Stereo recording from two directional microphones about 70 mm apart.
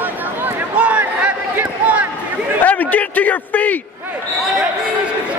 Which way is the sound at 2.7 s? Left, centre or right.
Left.